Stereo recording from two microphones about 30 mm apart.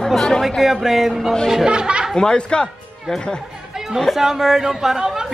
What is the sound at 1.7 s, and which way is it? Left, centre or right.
Speech, right.